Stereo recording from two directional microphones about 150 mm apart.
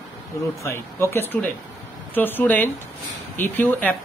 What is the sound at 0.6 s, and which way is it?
Speech, 15° left (ahead or behind).